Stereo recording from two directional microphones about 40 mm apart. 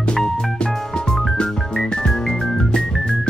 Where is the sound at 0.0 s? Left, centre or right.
Centre.